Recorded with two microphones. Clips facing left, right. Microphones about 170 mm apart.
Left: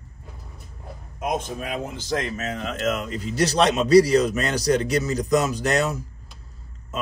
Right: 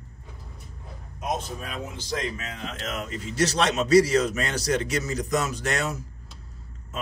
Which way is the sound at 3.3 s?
35° left (ahead or behind).